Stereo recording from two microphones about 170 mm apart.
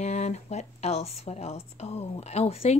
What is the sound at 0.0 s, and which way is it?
A woman's voice, 40° left (ahead or behind).